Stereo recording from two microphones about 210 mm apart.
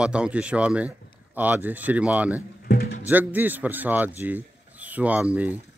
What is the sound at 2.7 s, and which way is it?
Music, 45° left (ahead or behind).